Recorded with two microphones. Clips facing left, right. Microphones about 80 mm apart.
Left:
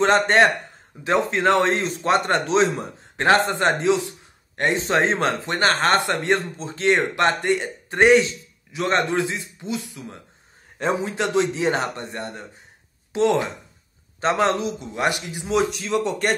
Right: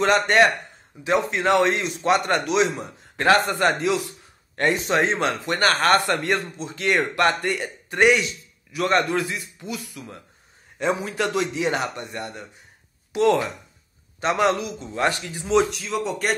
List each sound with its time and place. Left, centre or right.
0.0 s a man's voice: left
15.4 s speech: centre